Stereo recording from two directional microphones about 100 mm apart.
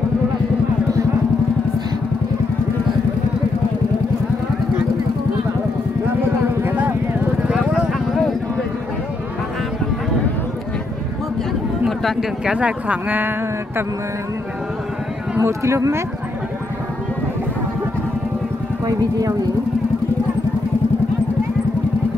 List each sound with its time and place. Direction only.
6.6 s vehicle: 20° right (ahead or behind)
7.4 s vehicle: 5° right (ahead or behind)
12.0 s speech: centre (ahead or behind)
15.3 s speech: 30° right (ahead or behind)
18.9 s speech: 40° right (ahead or behind)